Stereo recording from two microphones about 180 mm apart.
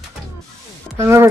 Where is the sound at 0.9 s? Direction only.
15° right (ahead or behind).